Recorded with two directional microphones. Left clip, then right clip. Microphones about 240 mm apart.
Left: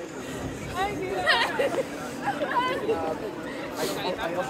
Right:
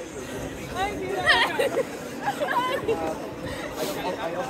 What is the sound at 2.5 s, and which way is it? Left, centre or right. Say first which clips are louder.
Speech: right 1 dB; right.